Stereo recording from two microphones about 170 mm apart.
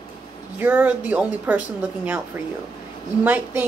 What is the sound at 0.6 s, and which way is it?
A woman's voice, 10° right (ahead or behind).